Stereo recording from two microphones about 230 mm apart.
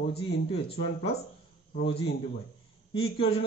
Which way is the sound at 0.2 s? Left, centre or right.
Left.